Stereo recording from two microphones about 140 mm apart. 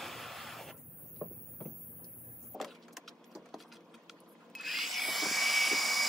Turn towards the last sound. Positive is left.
turn(degrees=0)  # may be behind; listen again after turning